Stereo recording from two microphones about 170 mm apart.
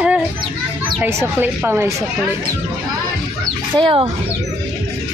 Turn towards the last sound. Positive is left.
turn(degrees=-25)  # may be behind; listen again after turning